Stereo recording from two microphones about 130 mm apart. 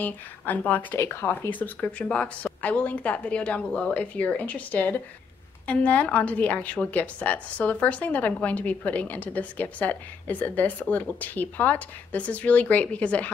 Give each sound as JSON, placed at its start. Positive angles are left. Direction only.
{"t": 0.0, "sound": "a woman's voice", "side_deg": 15}